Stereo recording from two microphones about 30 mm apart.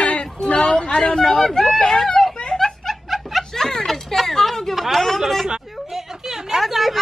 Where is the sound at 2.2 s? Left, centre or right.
Centre.